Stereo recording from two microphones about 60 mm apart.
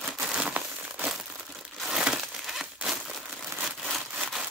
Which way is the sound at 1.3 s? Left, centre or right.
Centre.